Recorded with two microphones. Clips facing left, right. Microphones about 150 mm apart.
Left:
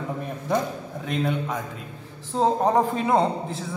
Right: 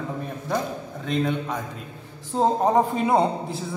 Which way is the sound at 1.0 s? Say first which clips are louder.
Right 1 dB; 5° left (ahead or behind).